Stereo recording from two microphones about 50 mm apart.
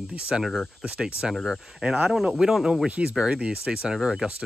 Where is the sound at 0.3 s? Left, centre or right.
Centre.